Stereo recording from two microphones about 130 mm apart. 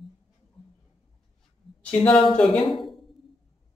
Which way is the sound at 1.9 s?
10° left (ahead or behind).